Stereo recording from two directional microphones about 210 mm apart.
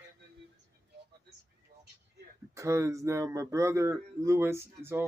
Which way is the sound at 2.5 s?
15° right (ahead or behind).